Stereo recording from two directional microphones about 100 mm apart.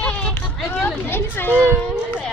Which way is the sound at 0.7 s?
20° left (ahead or behind).